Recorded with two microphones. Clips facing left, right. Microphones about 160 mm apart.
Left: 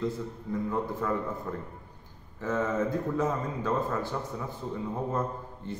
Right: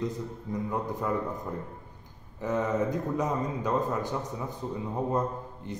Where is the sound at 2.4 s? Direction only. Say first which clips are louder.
Right 1 dB; 15° right (ahead or behind).